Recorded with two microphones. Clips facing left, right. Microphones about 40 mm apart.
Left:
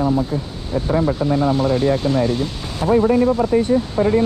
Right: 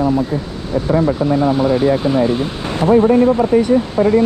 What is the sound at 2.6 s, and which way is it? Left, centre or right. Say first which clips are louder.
Speech: right 4 dB; right.